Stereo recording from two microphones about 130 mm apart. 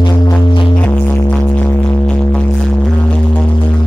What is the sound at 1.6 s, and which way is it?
Music, 10° left (ahead or behind).